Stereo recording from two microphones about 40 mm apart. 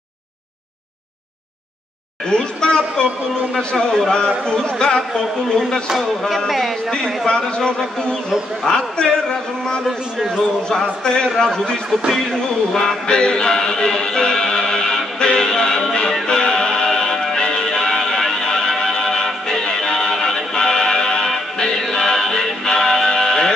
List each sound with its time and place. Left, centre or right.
2.2 s a sound: left
3.5 s a man's voice: centre
4.1 s a man's voice: left
5.9 s speech: centre
7.2 s a man's voice: left
9.8 s speech: centre
10.7 s a man's voice: centre
12.1 s music: centre